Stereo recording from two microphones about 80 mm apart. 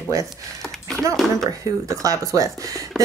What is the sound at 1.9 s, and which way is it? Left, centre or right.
Speech, right.